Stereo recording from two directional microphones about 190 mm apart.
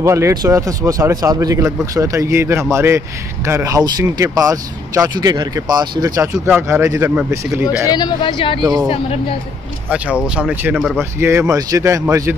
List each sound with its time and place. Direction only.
0.0 s speech: 15° right (ahead or behind)
7.9 s speech: 25° left (ahead or behind)
8.5 s a woman's voice: 20° right (ahead or behind)
8.8 s speech: 30° left (ahead or behind)
9.8 s speech: 5° right (ahead or behind)